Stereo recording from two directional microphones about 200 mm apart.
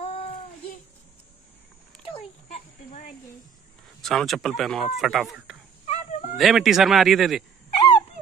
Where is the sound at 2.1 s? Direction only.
35° left (ahead or behind).